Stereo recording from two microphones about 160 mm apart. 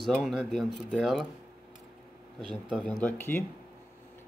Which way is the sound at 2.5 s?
5° left (ahead or behind).